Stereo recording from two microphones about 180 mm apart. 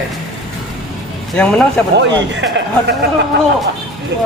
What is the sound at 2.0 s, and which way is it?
Speech, 80° right.